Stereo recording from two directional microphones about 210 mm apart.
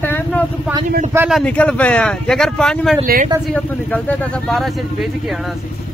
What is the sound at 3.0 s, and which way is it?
Speech, 45° right (ahead or behind).